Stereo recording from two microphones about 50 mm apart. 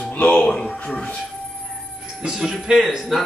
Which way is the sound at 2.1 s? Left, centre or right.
Centre.